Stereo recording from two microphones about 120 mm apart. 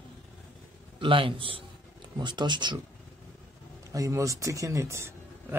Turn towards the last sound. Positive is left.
turn(degrees=-25)  # may be behind; listen again after turning